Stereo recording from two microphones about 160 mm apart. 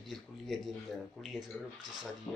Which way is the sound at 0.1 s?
Centre (ahead or behind).